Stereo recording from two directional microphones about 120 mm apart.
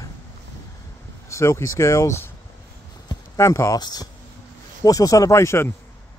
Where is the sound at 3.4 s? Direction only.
25° left (ahead or behind).